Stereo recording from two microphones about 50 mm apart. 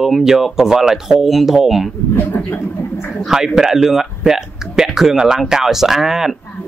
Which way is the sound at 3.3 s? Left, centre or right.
Centre.